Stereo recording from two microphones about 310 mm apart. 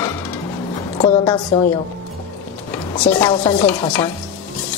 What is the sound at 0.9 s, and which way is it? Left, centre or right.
Speech, centre.